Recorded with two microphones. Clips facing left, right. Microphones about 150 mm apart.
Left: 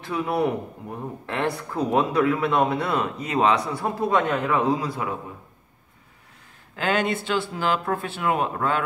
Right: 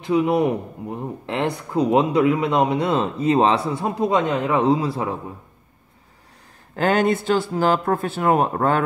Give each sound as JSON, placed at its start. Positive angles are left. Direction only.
{"t": 0.0, "sound": "speech", "side_deg": -20}
{"t": 6.8, "sound": "speech", "side_deg": -45}